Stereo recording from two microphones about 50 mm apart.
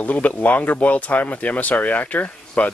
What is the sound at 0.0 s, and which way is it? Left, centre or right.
Speech, left.